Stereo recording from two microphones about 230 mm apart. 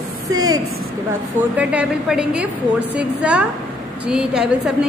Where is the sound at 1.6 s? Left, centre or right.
Centre.